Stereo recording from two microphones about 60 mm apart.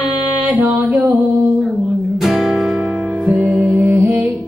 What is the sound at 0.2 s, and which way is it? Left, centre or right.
Music, right.